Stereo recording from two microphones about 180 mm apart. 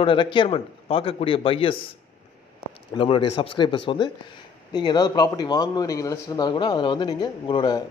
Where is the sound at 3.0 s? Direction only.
30° left (ahead or behind).